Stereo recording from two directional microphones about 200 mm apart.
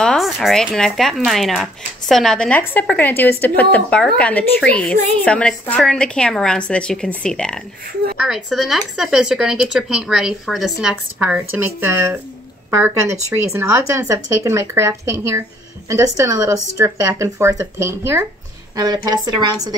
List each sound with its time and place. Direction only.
0.0 s speech: centre (ahead or behind); by 19.5 s 20° right (ahead or behind)